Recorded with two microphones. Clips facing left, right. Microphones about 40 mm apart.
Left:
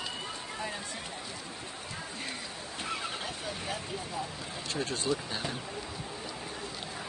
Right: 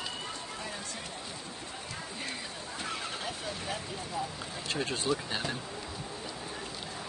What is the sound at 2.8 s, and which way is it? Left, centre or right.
Vehicle, centre.